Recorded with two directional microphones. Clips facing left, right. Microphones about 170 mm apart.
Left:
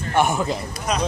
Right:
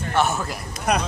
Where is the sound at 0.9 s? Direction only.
60° right (ahead or behind).